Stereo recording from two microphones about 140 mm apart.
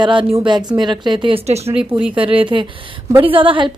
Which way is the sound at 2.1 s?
40° right (ahead or behind).